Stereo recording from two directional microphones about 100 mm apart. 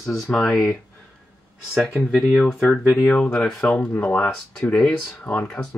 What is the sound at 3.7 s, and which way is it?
Speech, 20° left (ahead or behind).